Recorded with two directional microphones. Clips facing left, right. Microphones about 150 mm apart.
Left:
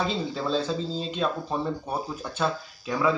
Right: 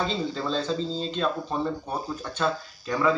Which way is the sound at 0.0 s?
5° left (ahead or behind).